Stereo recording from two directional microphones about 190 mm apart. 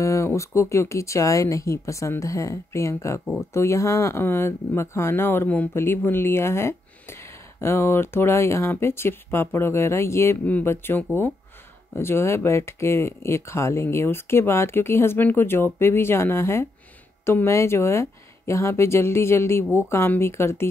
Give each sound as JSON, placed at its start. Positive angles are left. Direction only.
{"t": 0.0, "sound": "speech", "side_deg": 15}